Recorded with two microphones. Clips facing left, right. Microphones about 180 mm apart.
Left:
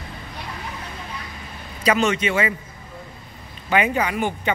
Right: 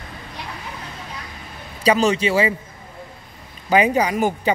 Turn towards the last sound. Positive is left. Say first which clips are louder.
# right 4 dB
turn(degrees=-40)  # may be behind; listen again after turning